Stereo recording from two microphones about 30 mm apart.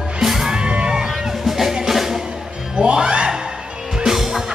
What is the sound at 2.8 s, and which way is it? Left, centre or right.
Speech, right.